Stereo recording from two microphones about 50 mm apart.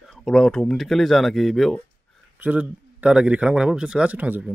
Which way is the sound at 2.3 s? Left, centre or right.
Right.